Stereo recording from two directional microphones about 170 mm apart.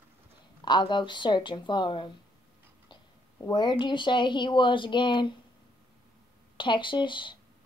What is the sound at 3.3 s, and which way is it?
A woman's voice, 20° left (ahead or behind).